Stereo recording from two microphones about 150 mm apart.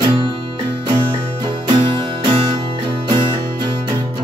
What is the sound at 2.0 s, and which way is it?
Music, 30° right (ahead or behind).